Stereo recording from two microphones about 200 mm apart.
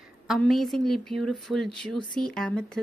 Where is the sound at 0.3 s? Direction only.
Centre (ahead or behind).